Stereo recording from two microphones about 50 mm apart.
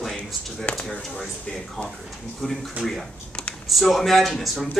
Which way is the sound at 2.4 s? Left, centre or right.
Centre.